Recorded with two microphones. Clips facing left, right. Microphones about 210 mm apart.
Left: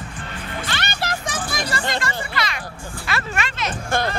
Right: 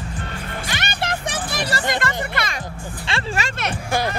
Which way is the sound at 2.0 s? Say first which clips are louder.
Right 2 dB; 55° right (ahead or behind).